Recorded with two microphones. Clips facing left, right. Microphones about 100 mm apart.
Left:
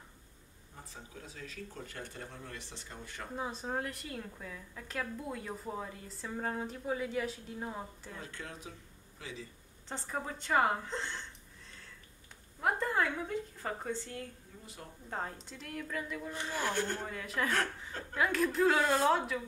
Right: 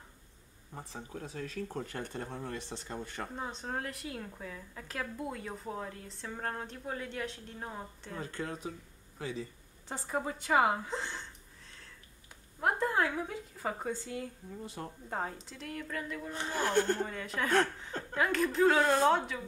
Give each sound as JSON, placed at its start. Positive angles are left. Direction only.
{"t": 1.1, "sound": "speech", "side_deg": -50}
{"t": 3.3, "sound": "a woman's voice", "side_deg": 5}
{"t": 8.2, "sound": "speech", "side_deg": -40}
{"t": 9.8, "sound": "a woman's voice", "side_deg": -10}
{"t": 12.5, "sound": "a woman's voice", "side_deg": 0}
{"t": 16.3, "sound": "speech", "side_deg": -35}
{"t": 17.0, "sound": "a woman's voice", "side_deg": 0}